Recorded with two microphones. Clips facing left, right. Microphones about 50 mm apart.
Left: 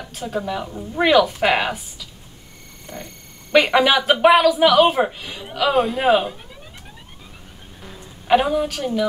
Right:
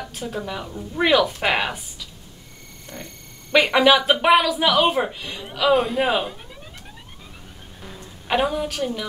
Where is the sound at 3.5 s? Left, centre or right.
Centre.